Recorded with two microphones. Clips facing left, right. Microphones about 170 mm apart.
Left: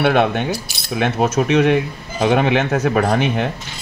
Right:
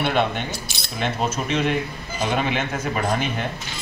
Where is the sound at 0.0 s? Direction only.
65° left (ahead or behind).